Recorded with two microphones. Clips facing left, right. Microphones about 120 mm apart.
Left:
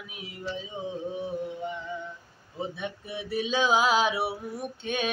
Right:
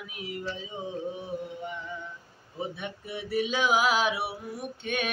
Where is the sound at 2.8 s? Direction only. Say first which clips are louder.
Left 1 dB; 20° left (ahead or behind).